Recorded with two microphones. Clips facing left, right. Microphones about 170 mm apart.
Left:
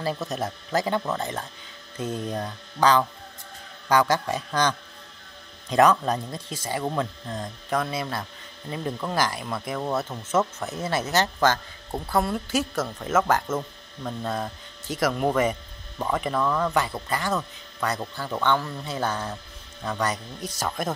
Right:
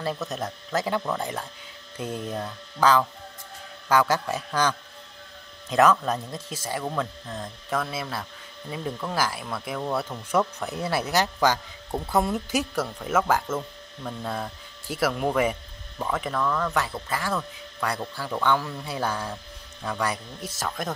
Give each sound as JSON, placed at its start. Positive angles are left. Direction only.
{"t": 0.3, "sound": "speech", "side_deg": 5}
{"t": 6.8, "sound": "speech", "side_deg": 10}
{"t": 7.2, "sound": "speech", "side_deg": 0}
{"t": 10.7, "sound": "speech", "side_deg": -10}
{"t": 12.8, "sound": "speech", "side_deg": -5}
{"t": 16.7, "sound": "speech", "side_deg": 0}